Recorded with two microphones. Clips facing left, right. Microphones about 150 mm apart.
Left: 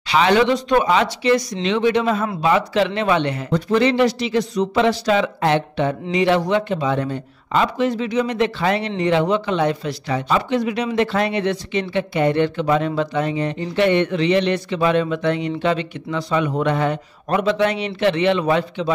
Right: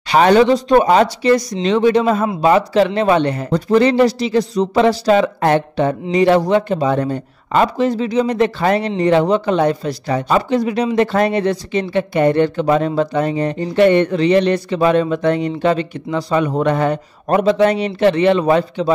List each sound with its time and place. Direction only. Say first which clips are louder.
0.1 s speech: right 5 dB; 45° right (ahead or behind)